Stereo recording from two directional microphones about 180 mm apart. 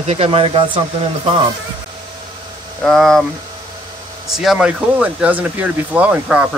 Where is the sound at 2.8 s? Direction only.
5° left (ahead or behind).